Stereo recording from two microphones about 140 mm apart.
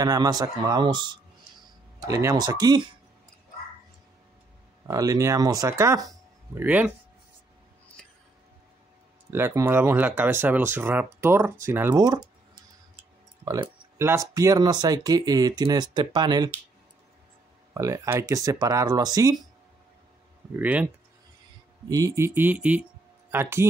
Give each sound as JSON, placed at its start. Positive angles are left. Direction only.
{"t": 0.0, "sound": "speech", "side_deg": -25}
{"t": 4.8, "sound": "speech", "side_deg": -25}
{"t": 6.6, "sound": "speech", "side_deg": -10}
{"t": 9.3, "sound": "speech", "side_deg": -15}
{"t": 13.5, "sound": "speech", "side_deg": -20}
{"t": 17.7, "sound": "speech", "side_deg": -20}
{"t": 20.5, "sound": "speech", "side_deg": -10}
{"t": 21.8, "sound": "speech", "side_deg": -25}